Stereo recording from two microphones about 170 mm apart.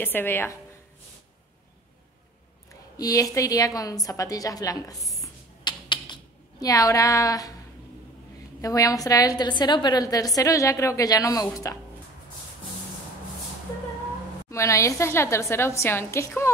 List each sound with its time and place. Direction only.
0.0 s a woman's voice: 10° left (ahead or behind)
2.7 s a woman's voice: 20° left (ahead or behind)
5.0 s a sound: centre (ahead or behind)
5.6 s a sound: 25° left (ahead or behind)
6.6 s a woman's voice: 20° left (ahead or behind)
8.5 s a woman's voice: 20° left (ahead or behind)
14.5 s a woman's voice: 20° left (ahead or behind)